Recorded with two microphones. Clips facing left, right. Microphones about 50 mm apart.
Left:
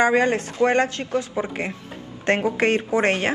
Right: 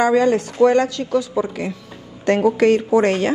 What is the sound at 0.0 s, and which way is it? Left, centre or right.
Speech, left.